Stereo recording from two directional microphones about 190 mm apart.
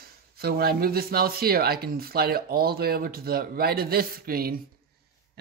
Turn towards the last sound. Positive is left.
turn(degrees=-50)  # may be behind; listen again after turning